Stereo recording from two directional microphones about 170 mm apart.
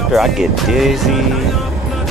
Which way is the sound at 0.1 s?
Centre (ahead or behind).